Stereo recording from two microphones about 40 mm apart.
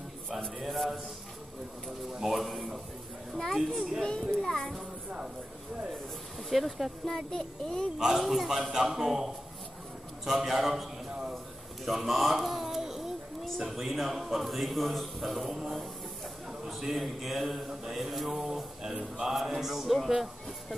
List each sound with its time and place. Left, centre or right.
0.6 s a man's voice: centre
2.1 s speech: centre
3.5 s a man's voice: centre
4.0 s a child's voice: left
6.5 s a man's voice: centre
7.1 s a child's voice: centre
8.0 s a man's voice: centre
18.8 s a man's voice: centre